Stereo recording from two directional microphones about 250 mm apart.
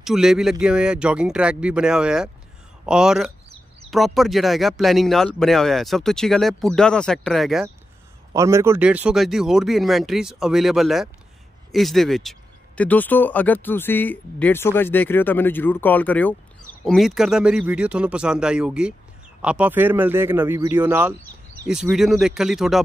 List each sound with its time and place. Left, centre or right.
0.0 s speech: centre
8.3 s speech: centre